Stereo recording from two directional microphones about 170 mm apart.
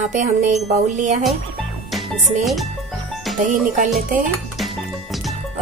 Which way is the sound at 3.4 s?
50° right (ahead or behind).